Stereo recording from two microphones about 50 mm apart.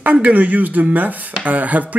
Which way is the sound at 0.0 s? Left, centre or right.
Right.